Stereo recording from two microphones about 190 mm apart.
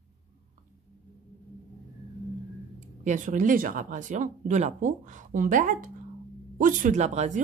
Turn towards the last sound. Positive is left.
turn(degrees=-40)  # may be behind; listen again after turning